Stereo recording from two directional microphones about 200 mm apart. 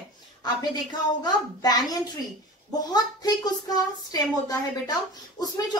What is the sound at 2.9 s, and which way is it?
A woman's voice, 20° left (ahead or behind).